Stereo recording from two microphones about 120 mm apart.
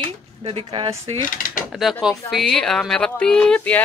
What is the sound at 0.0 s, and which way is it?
Speech, 50° right (ahead or behind).